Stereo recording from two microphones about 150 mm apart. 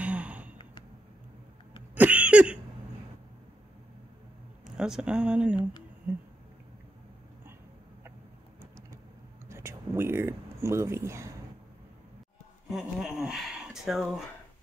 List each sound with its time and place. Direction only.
0.0 s sigh: 10° right (ahead or behind)
2.0 s a sound: 10° right (ahead or behind)
4.6 s speech: 5° right (ahead or behind)
5.6 s speech: 30° left (ahead or behind)
9.5 s speech: 15° right (ahead or behind)
12.6 s speech: 5° right (ahead or behind)